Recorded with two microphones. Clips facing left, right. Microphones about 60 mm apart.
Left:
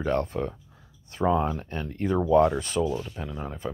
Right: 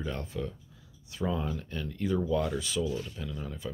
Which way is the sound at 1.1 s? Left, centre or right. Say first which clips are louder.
Left 8 dB; left.